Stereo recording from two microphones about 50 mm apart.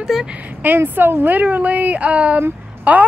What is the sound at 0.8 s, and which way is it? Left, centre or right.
Speech, right.